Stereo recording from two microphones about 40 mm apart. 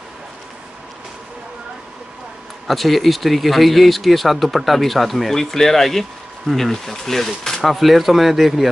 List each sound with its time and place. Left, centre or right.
2.6 s speech: centre